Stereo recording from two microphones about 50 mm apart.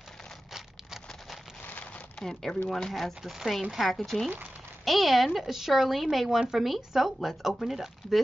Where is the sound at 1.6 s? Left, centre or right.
Left.